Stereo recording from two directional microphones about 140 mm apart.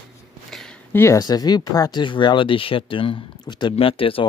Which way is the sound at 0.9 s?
20° left (ahead or behind).